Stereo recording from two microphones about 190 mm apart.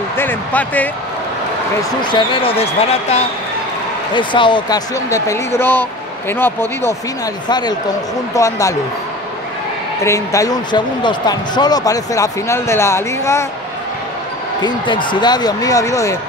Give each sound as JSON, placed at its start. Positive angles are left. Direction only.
{"t": 0.2, "sound": "speech", "side_deg": 10}
{"t": 2.0, "sound": "speech", "side_deg": 25}
{"t": 10.0, "sound": "speech", "side_deg": 15}
{"t": 14.6, "sound": "speech", "side_deg": 25}